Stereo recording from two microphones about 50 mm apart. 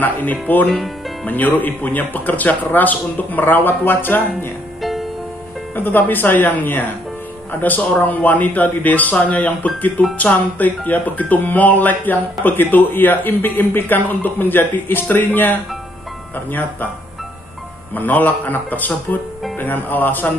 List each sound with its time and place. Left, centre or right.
0.0 s speech: left
5.8 s speech: left
17.9 s speech: left